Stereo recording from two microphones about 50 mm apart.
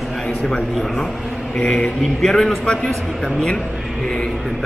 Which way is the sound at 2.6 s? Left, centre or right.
Centre.